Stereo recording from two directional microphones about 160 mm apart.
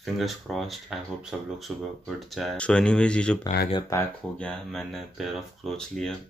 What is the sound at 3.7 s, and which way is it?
Speech, 20° left (ahead or behind).